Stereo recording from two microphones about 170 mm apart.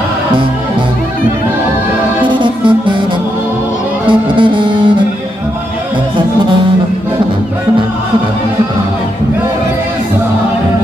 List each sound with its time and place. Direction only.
2.2 s music: 30° right (ahead or behind)
4.1 s music: 30° right (ahead or behind)